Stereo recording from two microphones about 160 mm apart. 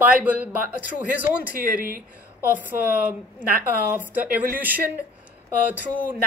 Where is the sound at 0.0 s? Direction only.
10° right (ahead or behind).